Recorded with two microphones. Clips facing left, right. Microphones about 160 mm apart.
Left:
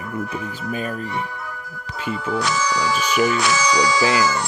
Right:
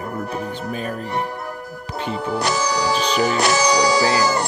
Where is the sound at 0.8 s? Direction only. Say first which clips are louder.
Right 2 dB; 40° right (ahead or behind).